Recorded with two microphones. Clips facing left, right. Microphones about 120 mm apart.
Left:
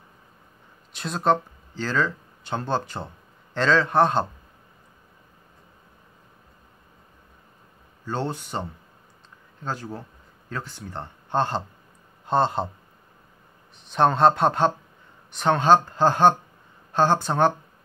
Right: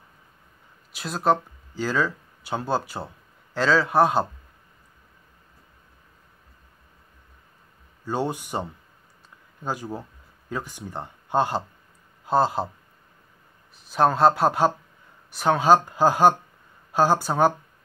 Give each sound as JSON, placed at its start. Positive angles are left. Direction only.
{"t": 0.9, "sound": "speech", "side_deg": -5}
{"t": 8.0, "sound": "speech", "side_deg": -10}
{"t": 13.7, "sound": "speech", "side_deg": -5}